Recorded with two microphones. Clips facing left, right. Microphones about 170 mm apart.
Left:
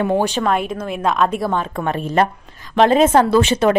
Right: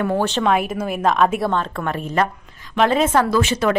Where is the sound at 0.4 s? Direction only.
Centre (ahead or behind).